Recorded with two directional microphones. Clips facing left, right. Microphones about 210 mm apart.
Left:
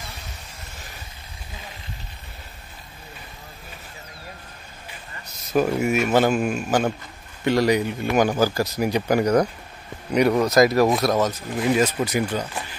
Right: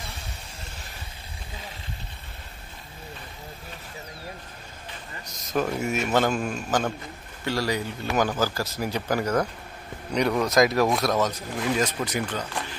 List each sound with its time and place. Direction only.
5.2 s a man's voice: 10° left (ahead or behind)
10.4 s speech: centre (ahead or behind)